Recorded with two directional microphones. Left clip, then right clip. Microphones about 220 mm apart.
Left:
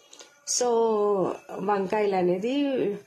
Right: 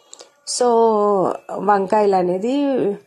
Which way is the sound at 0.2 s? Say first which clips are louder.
Right 8 dB; 35° right (ahead or behind).